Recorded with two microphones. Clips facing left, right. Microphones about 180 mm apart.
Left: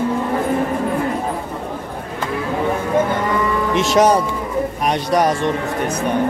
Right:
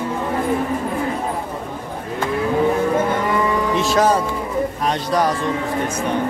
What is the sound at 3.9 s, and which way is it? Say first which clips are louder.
A man's voice: left 4 dB; 20° left (ahead or behind).